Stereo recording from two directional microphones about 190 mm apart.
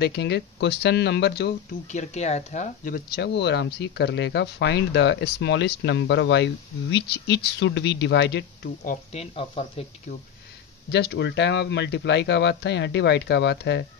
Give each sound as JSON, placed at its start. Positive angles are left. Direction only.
{"t": 0.0, "sound": "speech", "side_deg": 65}
{"t": 1.9, "sound": "speech", "side_deg": 35}
{"t": 8.8, "sound": "speech", "side_deg": 35}
{"t": 10.9, "sound": "speech", "side_deg": 60}